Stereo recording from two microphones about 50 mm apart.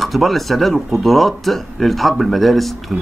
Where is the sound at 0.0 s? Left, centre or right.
Centre.